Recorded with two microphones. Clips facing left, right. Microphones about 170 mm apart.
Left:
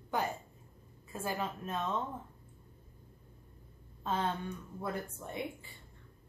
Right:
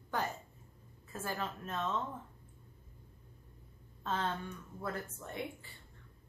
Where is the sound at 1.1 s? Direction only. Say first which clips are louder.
Left 3 dB; 10° left (ahead or behind).